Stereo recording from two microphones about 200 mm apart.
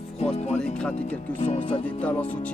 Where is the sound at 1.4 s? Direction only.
30° left (ahead or behind).